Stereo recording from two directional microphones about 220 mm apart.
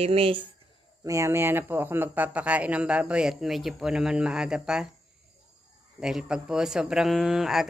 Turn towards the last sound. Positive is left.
turn(degrees=0)  # may be behind; listen again after turning